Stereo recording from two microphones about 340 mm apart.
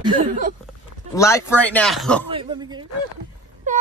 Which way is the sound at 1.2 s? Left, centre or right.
Centre.